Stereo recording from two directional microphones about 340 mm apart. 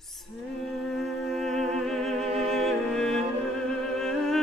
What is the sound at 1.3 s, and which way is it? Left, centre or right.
Music, centre.